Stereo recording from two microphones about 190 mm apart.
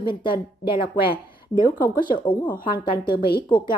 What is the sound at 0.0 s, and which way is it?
A woman's voice, 25° left (ahead or behind).